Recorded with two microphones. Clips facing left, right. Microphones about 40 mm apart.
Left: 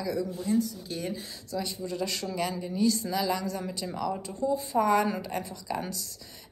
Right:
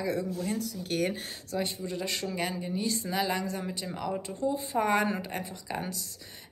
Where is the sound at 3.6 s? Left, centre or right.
Centre.